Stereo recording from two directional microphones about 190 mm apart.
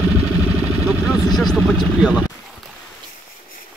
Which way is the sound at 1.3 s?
Centre (ahead or behind).